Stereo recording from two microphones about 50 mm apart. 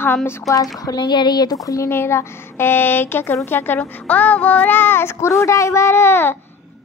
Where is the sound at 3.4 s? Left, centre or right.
Left.